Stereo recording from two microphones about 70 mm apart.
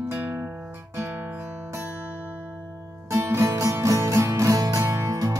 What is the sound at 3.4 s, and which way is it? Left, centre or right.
Music, right.